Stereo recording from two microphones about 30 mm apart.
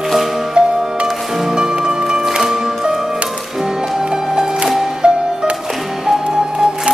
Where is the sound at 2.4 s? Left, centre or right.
Centre.